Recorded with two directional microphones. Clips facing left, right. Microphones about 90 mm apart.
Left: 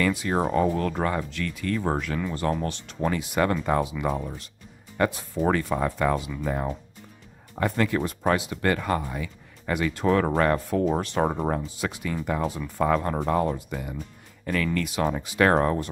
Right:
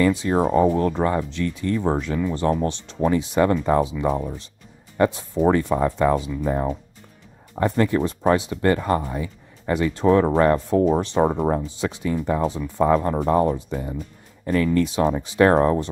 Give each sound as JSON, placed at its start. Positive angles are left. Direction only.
{"t": 0.0, "sound": "speech", "side_deg": -25}